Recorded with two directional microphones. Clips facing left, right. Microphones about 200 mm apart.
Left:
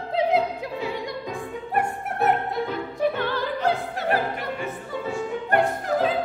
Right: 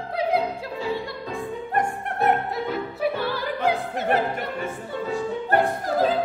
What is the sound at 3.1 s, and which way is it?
Opera, 10° right (ahead or behind).